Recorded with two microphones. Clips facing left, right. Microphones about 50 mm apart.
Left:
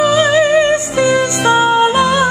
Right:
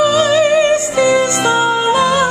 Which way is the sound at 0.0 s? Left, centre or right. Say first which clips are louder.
Even; left.